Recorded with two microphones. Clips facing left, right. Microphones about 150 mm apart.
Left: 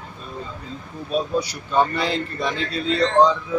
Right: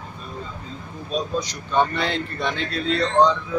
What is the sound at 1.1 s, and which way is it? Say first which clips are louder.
A man's voice: left 3 dB; 10° left (ahead or behind).